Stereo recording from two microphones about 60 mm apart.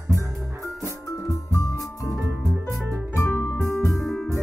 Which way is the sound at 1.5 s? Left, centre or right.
Left.